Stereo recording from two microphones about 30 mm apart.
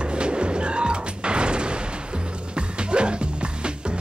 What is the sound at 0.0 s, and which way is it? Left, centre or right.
Music, right.